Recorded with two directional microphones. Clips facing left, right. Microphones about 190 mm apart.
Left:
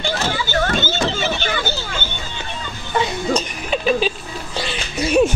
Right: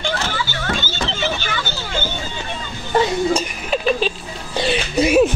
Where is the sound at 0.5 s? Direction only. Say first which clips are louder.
Left 5 dB; 45° left (ahead or behind).